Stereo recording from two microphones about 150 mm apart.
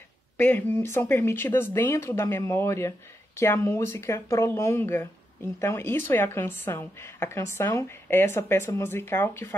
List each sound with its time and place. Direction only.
0.4 s a woman's voice: 15° left (ahead or behind)